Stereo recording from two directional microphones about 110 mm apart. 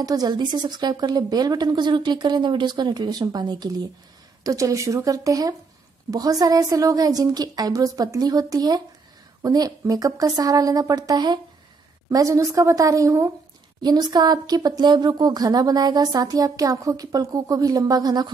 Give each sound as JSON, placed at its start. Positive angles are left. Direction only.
{"t": 0.0, "sound": "a woman's voice", "side_deg": -35}
{"t": 13.8, "sound": "speech", "side_deg": -40}